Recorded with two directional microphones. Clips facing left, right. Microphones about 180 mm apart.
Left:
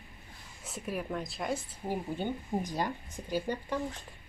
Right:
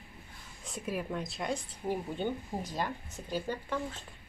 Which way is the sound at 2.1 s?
15° left (ahead or behind).